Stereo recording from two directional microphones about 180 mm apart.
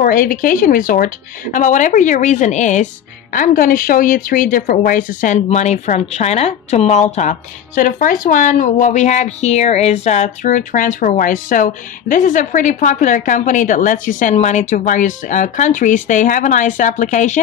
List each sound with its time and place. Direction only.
0.0 s speech: 50° left (ahead or behind)